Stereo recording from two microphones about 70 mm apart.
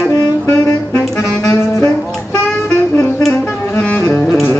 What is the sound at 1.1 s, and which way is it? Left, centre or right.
Saxophone, left.